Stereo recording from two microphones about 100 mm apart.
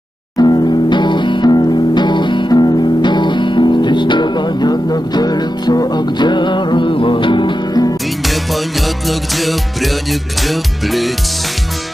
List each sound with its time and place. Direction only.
0.4 s music: 45° left (ahead or behind)
9.4 s music: centre (ahead or behind)